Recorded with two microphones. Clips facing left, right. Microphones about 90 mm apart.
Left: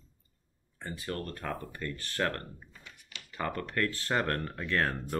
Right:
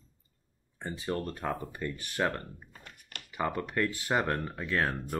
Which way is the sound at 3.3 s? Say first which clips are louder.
Right 2 dB; 15° right (ahead or behind).